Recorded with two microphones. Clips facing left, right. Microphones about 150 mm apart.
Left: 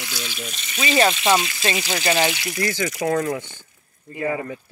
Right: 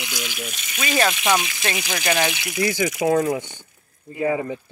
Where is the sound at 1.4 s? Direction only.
15° right (ahead or behind).